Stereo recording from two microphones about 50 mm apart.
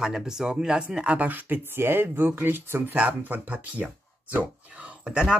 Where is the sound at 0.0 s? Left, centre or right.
Centre; by 3.0 s right.